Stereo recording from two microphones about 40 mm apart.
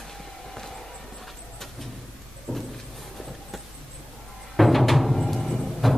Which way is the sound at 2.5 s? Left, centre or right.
Left.